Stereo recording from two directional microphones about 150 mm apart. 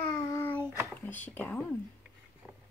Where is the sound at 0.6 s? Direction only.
15° right (ahead or behind).